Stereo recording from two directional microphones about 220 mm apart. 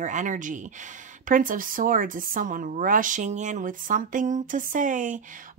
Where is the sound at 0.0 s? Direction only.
35° right (ahead or behind).